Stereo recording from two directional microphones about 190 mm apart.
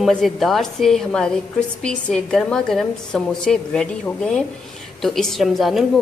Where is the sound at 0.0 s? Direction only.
Centre (ahead or behind).